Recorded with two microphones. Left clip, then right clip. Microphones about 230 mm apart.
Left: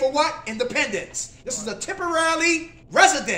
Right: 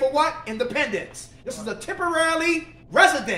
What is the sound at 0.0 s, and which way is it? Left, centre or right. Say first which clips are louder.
Speech: even; centre.